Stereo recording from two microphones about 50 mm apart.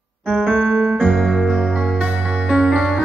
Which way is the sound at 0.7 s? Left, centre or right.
Centre.